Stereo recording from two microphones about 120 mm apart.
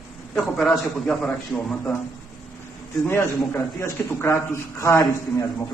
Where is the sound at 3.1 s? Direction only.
20° left (ahead or behind).